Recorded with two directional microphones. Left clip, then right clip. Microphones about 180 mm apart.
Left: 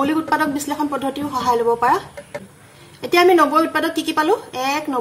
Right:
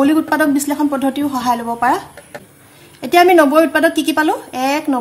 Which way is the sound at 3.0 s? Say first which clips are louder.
Right 4 dB; 50° right (ahead or behind).